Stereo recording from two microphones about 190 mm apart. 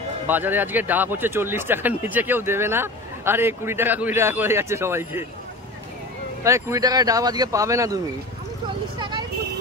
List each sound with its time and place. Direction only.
0.3 s speech: 10° right (ahead or behind)
6.4 s speech: 15° right (ahead or behind)